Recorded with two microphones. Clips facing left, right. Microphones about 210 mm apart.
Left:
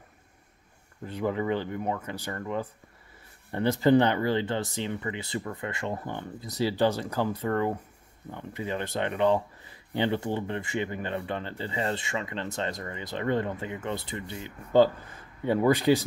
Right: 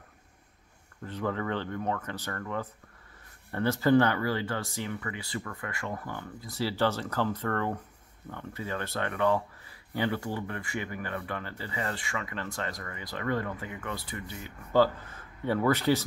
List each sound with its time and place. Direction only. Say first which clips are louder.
1.0 s speech: left 3 dB; 15° left (ahead or behind)